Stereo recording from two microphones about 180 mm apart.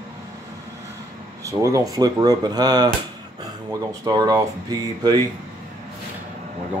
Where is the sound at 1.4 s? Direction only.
20° right (ahead or behind).